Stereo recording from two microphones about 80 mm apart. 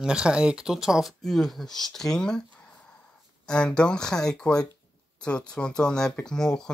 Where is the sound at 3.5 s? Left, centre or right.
Centre.